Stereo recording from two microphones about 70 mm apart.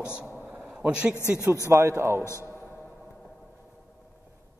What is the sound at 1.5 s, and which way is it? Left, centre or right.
Speech, right.